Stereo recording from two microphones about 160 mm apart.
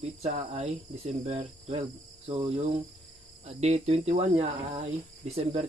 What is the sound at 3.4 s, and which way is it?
Speech, 40° right (ahead or behind).